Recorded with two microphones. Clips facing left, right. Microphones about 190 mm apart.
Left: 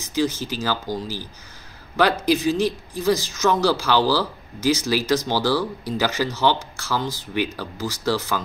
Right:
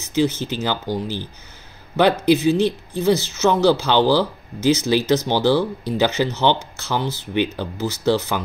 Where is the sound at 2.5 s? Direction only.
10° left (ahead or behind).